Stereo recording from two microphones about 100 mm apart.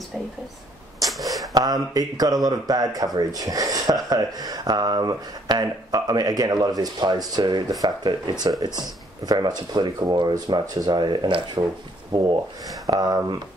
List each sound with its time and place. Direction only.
1.5 s speech: 40° right (ahead or behind)
12.8 s speech: 40° right (ahead or behind)